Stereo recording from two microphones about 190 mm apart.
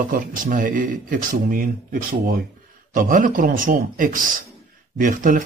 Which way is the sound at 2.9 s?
45° right (ahead or behind).